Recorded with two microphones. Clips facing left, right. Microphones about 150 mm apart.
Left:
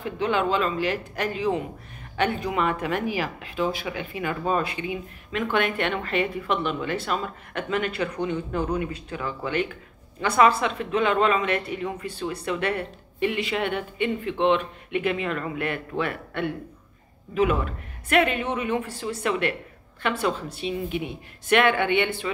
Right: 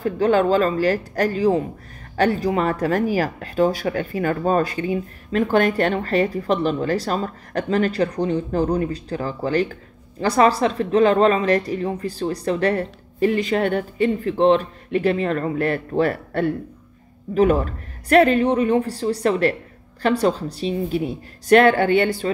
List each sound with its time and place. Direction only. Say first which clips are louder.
0.0 s speech: right 7 dB; 40° right (ahead or behind)